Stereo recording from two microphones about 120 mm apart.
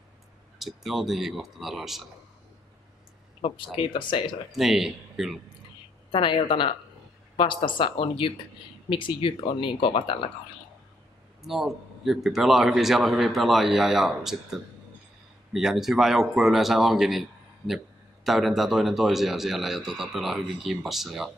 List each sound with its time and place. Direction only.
0.6 s a man's voice: centre (ahead or behind)
3.3 s speech: 50° left (ahead or behind)
4.5 s a man's voice: centre (ahead or behind)
6.1 s speech: 45° left (ahead or behind)
11.4 s a man's voice: centre (ahead or behind)